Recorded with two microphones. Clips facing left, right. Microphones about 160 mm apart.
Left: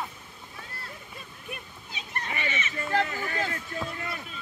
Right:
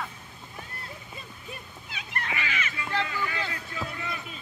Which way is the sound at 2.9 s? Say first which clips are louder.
Left 3 dB; 45° left (ahead or behind).